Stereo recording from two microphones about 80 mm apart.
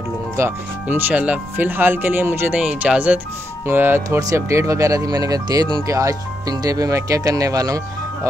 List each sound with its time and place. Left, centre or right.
0.4 s speech: right
0.8 s speech: right
2.6 s speech: centre
3.6 s speech: right
4.2 s speech: right